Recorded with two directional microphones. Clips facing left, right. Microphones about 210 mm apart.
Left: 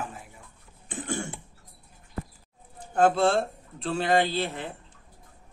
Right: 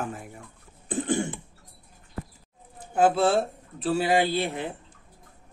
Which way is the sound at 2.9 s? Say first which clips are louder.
Right 1 dB; 5° right (ahead or behind).